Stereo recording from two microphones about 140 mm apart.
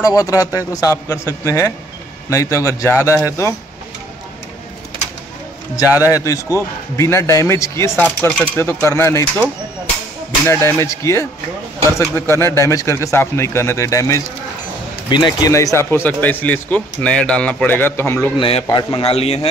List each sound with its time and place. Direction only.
0.0 s a man's voice: 25° left (ahead or behind)
6.0 s a man's voice: 20° left (ahead or behind)
18.4 s speech: 35° left (ahead or behind)